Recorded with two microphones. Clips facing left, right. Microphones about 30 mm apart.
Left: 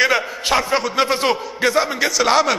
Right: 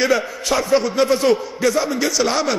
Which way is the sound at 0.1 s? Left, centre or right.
Left.